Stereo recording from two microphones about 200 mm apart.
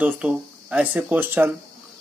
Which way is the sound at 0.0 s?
5° right (ahead or behind).